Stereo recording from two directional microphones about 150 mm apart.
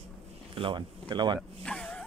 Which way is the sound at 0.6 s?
35° right (ahead or behind).